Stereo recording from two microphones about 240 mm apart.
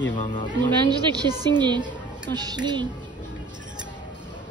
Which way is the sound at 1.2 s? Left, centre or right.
Centre.